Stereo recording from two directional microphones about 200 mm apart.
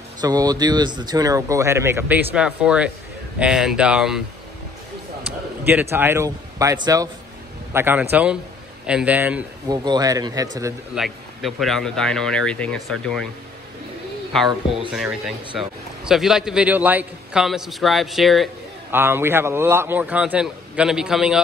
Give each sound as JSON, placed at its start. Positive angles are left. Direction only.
{"t": 0.2, "sound": "a man's voice", "side_deg": -20}
{"t": 5.6, "sound": "a man's voice", "side_deg": -10}
{"t": 9.7, "sound": "speech", "side_deg": -20}
{"t": 11.0, "sound": "a man's voice", "side_deg": 0}
{"t": 14.3, "sound": "a man's voice", "side_deg": 0}
{"t": 18.9, "sound": "a man's voice", "side_deg": -10}